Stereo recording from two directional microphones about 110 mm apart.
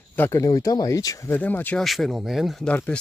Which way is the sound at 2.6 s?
15° left (ahead or behind).